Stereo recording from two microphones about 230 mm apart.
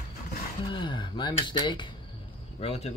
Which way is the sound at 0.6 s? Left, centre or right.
Left.